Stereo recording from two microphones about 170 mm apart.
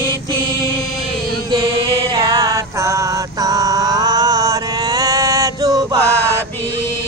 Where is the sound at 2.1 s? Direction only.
20° right (ahead or behind).